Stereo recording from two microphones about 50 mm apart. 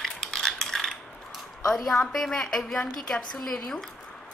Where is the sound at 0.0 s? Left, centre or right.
Centre.